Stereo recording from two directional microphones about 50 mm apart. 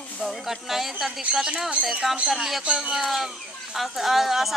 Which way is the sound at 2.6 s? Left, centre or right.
Centre.